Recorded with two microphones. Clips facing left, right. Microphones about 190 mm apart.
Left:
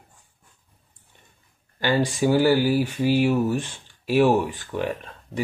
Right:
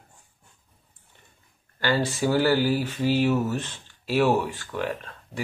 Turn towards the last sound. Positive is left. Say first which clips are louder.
# left 4 dB
turn(degrees=15)  # may be behind; listen again after turning